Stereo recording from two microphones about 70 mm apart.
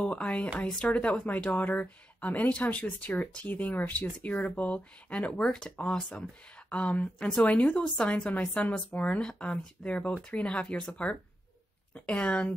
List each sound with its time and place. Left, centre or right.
0.0 s a woman's voice: centre